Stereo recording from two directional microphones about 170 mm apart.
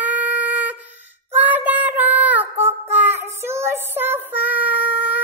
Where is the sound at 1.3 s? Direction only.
10° right (ahead or behind).